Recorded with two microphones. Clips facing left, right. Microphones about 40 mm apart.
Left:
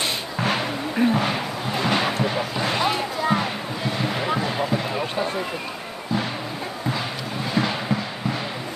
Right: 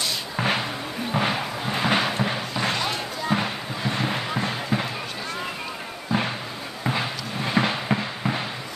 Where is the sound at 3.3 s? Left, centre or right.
Centre.